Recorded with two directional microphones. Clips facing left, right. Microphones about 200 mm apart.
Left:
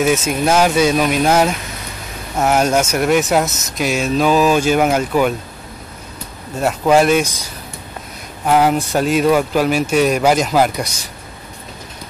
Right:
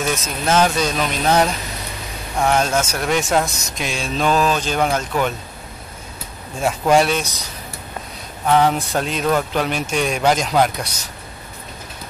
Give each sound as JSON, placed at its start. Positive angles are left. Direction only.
{"t": 0.3, "sound": "speech", "side_deg": 10}
{"t": 6.5, "sound": "speech", "side_deg": 5}
{"t": 8.5, "sound": "speech", "side_deg": 10}